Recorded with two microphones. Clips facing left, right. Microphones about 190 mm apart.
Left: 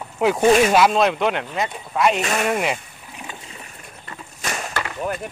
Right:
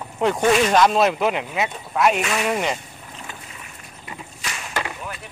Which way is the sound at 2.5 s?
5° left (ahead or behind).